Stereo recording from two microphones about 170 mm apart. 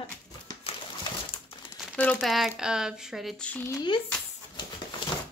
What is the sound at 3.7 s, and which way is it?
Speech, 25° left (ahead or behind).